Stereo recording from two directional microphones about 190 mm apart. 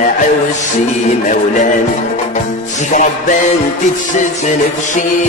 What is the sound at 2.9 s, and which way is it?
Music, 40° left (ahead or behind).